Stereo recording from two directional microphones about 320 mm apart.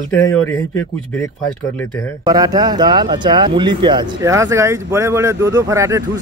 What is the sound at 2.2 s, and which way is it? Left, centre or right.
Speech, centre.